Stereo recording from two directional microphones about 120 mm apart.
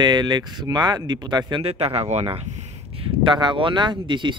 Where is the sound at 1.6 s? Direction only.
60° right (ahead or behind).